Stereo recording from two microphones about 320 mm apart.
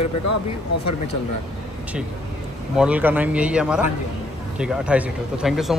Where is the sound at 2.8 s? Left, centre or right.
Centre.